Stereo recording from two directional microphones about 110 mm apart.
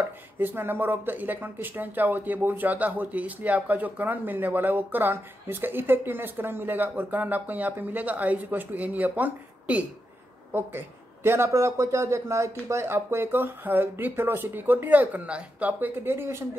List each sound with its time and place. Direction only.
0.4 s speech: 20° right (ahead or behind)